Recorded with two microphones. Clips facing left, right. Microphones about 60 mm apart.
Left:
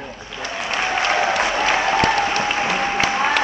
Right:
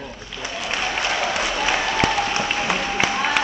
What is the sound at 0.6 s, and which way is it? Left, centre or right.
Applause, left.